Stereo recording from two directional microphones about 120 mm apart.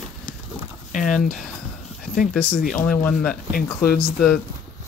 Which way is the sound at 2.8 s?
10° left (ahead or behind).